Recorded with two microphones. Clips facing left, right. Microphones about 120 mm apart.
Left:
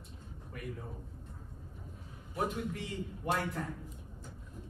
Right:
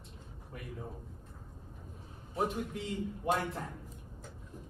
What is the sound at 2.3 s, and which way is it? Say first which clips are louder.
Speech: right 1 dB; 30° right (ahead or behind).